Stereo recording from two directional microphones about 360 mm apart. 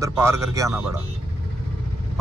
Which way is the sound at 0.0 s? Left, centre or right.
Centre.